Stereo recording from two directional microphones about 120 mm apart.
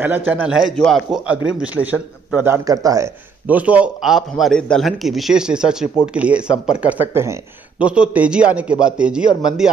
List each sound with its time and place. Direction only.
0.0 s a man's voice: 15° right (ahead or behind); by 1.2 s centre (ahead or behind)
1.3 s a man's voice: 10° right (ahead or behind); by 3.1 s 30° right (ahead or behind)
3.4 s a man's voice: 10° right (ahead or behind)